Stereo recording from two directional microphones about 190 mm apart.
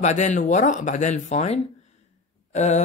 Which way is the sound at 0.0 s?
40° left (ahead or behind).